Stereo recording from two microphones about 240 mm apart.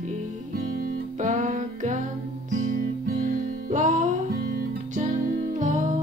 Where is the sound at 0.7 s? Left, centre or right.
Right.